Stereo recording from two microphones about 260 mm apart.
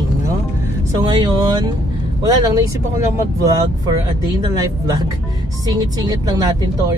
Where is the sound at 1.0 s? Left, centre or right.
Centre.